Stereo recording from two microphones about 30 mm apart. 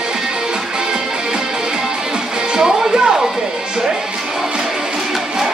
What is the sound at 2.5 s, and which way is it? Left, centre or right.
Music, centre.